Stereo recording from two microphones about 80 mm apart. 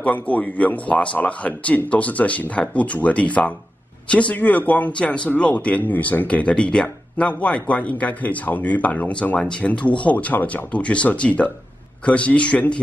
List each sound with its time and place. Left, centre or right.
0.0 s speech: centre